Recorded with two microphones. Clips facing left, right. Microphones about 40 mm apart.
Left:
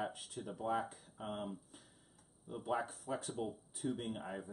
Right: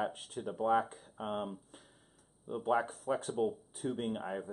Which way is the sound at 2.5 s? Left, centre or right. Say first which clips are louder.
Right 7 dB; right.